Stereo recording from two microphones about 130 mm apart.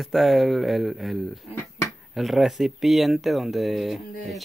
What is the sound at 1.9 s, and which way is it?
Speech, centre (ahead or behind).